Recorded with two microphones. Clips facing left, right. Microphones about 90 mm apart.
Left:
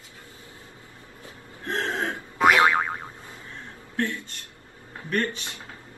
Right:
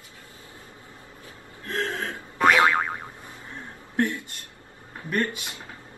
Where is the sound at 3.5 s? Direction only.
20° right (ahead or behind).